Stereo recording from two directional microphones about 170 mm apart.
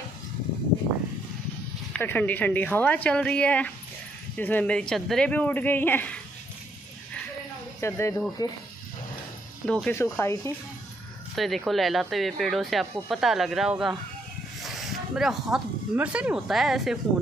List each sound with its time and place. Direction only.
2.0 s speech: 10° left (ahead or behind)
7.8 s speech: 15° left (ahead or behind)
9.7 s speech: 5° left (ahead or behind)
11.3 s speech: centre (ahead or behind)